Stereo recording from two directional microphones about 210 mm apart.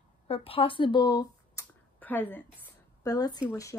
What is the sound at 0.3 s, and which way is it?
Speech, 25° left (ahead or behind).